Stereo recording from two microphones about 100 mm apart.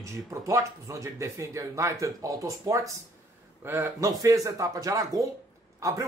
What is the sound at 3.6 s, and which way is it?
Speech, 25° right (ahead or behind).